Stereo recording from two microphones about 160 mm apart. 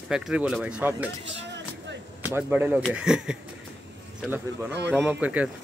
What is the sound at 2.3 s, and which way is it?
Speech, 15° right (ahead or behind).